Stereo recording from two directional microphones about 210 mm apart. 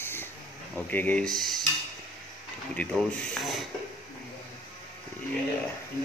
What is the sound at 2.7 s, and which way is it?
Speech, 5° left (ahead or behind).